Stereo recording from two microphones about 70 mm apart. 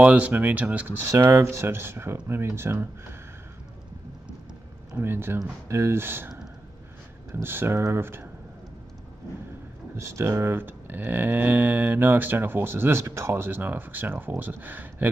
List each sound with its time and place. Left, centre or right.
0.0 s speech: centre
1.0 s speech: right
4.9 s speech: right
7.4 s speech: right
9.9 s speech: right